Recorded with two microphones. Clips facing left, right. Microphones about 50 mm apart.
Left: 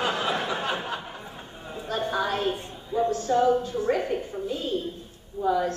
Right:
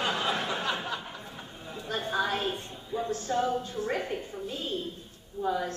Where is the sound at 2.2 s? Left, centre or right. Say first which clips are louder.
Even; left.